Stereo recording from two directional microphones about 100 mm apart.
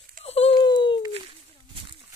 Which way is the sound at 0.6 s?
50° left (ahead or behind).